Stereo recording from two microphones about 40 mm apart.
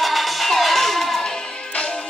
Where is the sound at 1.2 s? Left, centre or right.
Left.